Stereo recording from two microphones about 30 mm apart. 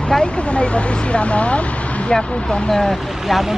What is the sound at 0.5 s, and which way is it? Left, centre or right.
Speech, left.